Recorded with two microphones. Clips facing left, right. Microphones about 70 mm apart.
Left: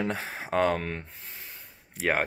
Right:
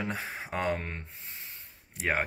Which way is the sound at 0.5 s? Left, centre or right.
Left.